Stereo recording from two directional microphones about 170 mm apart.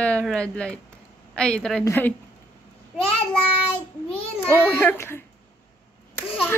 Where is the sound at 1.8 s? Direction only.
15° left (ahead or behind).